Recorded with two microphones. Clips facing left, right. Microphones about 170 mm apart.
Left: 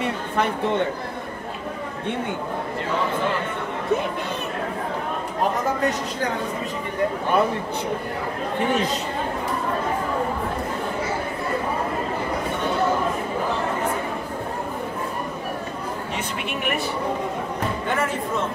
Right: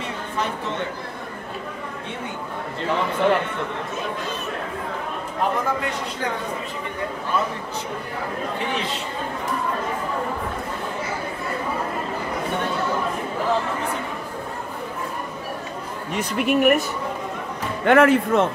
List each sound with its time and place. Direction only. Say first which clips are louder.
7.3 s speech: left 4 dB; 60° left (ahead or behind)
16.2 s speech: right 8 dB; 45° right (ahead or behind)
17.8 s speech: right 13 dB; 70° right (ahead or behind)